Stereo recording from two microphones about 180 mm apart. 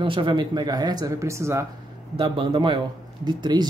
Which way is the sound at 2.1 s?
30° right (ahead or behind).